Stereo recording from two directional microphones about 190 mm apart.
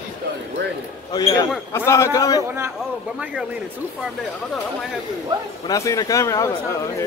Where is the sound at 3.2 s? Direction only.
5° right (ahead or behind).